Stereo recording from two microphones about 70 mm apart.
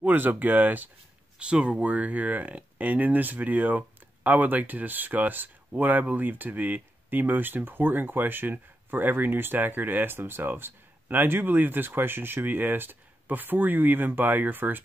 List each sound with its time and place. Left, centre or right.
0.0 s speech: right
1.4 s speech: centre